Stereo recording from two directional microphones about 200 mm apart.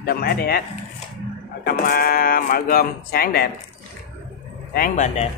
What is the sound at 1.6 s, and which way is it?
Speech, 50° left (ahead or behind).